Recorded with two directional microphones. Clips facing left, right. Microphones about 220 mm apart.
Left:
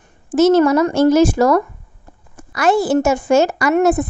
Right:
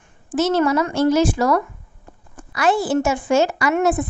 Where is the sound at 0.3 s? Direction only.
45° left (ahead or behind).